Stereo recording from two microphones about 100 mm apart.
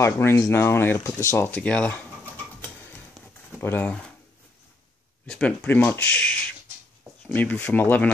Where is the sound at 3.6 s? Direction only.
20° left (ahead or behind).